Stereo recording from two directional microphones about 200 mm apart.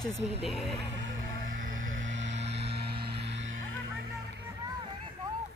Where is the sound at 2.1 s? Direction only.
65° right (ahead or behind).